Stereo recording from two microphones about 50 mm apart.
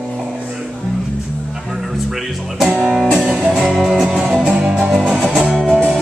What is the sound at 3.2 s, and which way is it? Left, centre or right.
Music, right.